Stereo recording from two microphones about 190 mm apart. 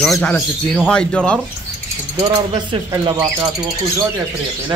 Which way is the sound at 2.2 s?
25° right (ahead or behind).